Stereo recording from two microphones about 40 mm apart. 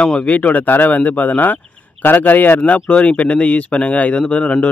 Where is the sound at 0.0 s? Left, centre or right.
Left.